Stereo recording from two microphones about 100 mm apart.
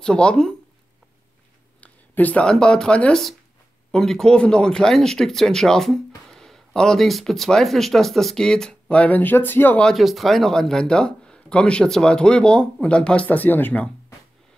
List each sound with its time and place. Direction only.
0.0 s speech: 10° left (ahead or behind)
1.8 s speech: 15° left (ahead or behind)
9.8 s speech: centre (ahead or behind); by 13.8 s 20° left (ahead or behind)